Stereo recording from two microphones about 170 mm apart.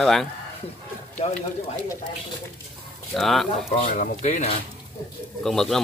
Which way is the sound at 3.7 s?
35° left (ahead or behind).